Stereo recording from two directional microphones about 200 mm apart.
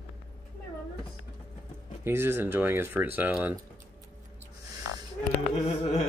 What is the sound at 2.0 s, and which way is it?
Speech, 10° right (ahead or behind).